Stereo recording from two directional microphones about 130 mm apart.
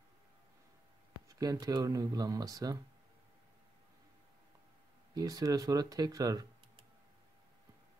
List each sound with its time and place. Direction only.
1.3 s speech: 30° right (ahead or behind)
5.1 s speech: 30° right (ahead or behind)